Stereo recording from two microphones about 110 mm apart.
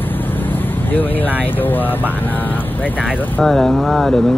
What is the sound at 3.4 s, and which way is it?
Speech, 5° left (ahead or behind).